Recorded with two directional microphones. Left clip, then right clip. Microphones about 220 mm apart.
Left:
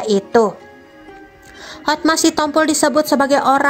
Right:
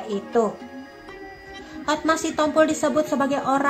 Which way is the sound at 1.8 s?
40° left (ahead or behind).